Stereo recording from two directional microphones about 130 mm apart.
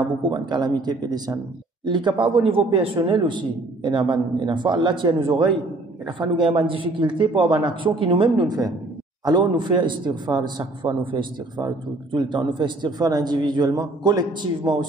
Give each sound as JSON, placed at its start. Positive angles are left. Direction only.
{"t": 0.0, "sound": "a man's voice", "side_deg": -40}